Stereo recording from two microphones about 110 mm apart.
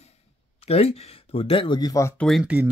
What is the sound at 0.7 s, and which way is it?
Speech, 65° left (ahead or behind).